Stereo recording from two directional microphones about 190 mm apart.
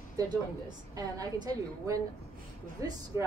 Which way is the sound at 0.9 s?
20° right (ahead or behind).